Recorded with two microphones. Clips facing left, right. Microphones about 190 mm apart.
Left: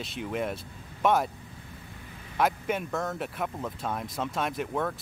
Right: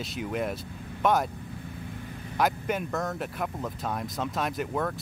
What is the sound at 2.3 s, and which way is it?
Speech, centre (ahead or behind).